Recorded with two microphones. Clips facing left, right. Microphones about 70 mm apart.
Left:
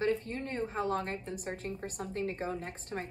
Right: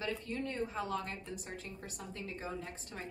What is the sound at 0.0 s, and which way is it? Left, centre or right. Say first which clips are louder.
A woman's voice: left 6 dB; left.